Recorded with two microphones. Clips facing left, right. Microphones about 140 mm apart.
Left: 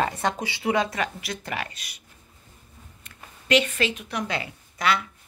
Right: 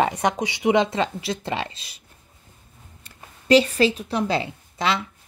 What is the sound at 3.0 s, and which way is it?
A woman's voice, 35° right (ahead or behind).